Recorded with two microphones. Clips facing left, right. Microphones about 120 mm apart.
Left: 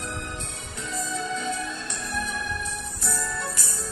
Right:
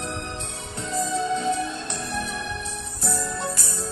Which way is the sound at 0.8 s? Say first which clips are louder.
Right 6 dB; 35° right (ahead or behind).